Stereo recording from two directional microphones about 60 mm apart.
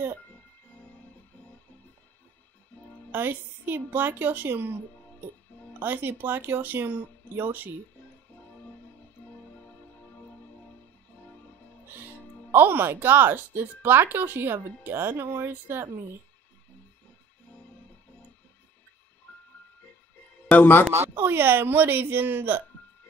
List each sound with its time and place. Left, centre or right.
3.1 s speech: right
5.8 s speech: right
9.2 s music: left
12.5 s speech: right
19.3 s music: left
20.5 s speech: left
20.9 s speech: right